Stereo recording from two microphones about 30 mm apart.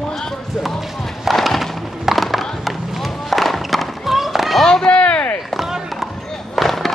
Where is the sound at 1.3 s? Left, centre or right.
Centre.